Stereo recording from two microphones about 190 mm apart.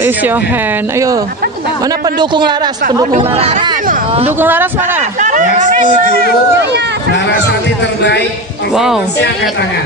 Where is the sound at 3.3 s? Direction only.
35° right (ahead or behind).